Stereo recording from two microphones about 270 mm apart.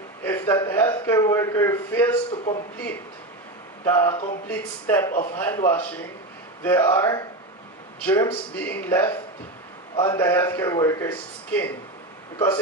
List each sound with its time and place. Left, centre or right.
0.2 s a man's voice: centre
2.3 s a man's voice: left
3.8 s a man's voice: centre
5.1 s a man's voice: left
5.4 s a man's voice: centre